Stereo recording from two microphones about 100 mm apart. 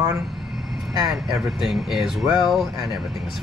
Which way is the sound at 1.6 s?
5° right (ahead or behind).